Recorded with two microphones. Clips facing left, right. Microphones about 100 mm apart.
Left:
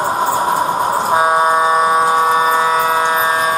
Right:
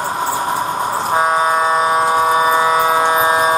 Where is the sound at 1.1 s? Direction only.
10° left (ahead or behind).